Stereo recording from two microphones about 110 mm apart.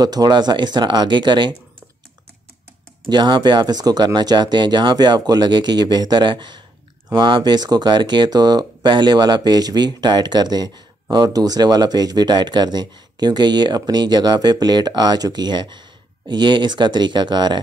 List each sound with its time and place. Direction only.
0.0 s speech: 35° right (ahead or behind)
3.1 s speech: 40° right (ahead or behind)